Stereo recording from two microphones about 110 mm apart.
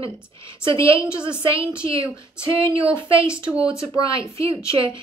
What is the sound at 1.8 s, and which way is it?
A woman's voice, 55° right (ahead or behind).